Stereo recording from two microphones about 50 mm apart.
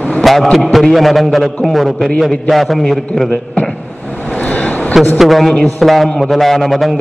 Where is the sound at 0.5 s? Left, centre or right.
Centre.